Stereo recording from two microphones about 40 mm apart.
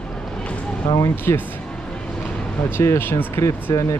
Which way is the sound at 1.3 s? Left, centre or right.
Left.